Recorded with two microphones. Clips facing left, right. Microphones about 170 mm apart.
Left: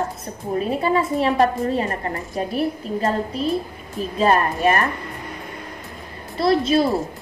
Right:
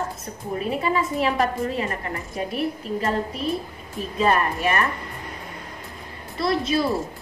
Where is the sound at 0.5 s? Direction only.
35° left (ahead or behind).